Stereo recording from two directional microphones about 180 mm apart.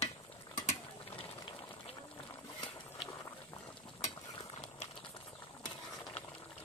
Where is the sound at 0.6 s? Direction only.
30° left (ahead or behind).